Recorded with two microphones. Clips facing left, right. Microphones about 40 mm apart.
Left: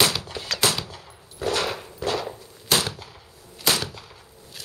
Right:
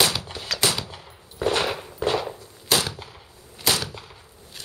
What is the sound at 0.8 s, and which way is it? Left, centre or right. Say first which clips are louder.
Machine gun: even; centre.